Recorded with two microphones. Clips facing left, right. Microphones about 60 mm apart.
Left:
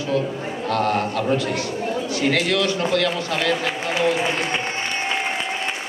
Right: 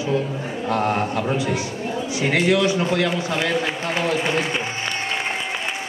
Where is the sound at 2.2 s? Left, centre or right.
Centre.